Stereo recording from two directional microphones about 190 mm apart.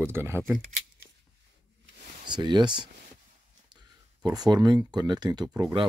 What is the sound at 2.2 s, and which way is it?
Speech, 25° right (ahead or behind).